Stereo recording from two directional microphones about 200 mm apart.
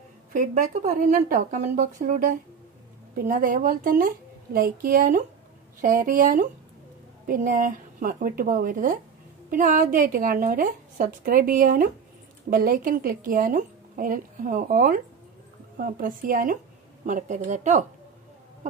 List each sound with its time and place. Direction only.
0.3 s a woman's voice: 40° right (ahead or behind)